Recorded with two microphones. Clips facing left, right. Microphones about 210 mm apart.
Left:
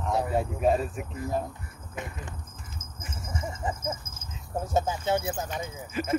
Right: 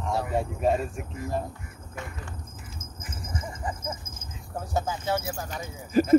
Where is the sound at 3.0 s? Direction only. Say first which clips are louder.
Left 1 dB; 25° left (ahead or behind).